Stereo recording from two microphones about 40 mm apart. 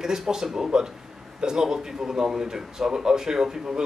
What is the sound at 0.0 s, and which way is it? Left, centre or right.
A man's voice, centre.